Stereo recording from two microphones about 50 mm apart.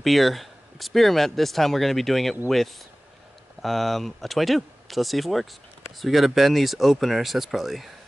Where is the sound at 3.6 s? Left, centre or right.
Centre.